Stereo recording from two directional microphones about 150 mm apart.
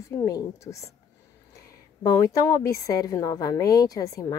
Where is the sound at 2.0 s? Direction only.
20° left (ahead or behind).